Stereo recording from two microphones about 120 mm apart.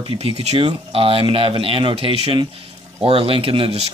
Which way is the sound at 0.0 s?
50° right (ahead or behind).